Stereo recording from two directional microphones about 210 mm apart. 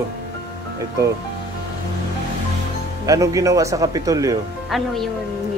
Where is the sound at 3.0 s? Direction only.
15° right (ahead or behind).